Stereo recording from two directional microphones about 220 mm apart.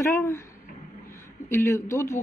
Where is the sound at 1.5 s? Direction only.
10° left (ahead or behind).